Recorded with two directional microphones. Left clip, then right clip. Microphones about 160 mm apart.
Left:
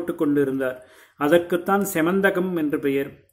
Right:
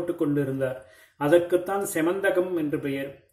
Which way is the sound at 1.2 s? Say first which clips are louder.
Left 2 dB; 30° left (ahead or behind).